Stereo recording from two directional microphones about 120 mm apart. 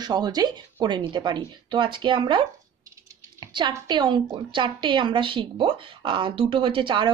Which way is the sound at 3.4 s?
40° right (ahead or behind).